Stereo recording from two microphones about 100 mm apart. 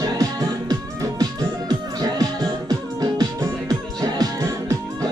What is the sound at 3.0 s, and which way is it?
Music, 40° right (ahead or behind).